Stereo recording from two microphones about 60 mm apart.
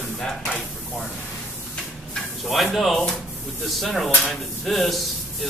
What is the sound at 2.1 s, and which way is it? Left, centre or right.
Speech, centre.